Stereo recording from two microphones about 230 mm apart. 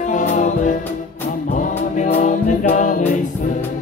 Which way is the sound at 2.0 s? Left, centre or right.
Left.